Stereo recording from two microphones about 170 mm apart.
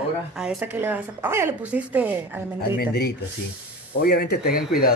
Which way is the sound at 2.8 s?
75° left (ahead or behind).